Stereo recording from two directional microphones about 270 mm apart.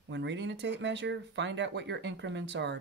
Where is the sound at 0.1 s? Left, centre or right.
Right.